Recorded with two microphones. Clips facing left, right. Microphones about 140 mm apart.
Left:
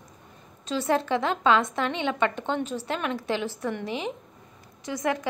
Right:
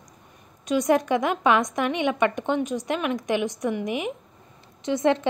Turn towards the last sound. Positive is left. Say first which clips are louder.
# right 6 dB
turn(degrees=-25)  # may be behind; listen again after turning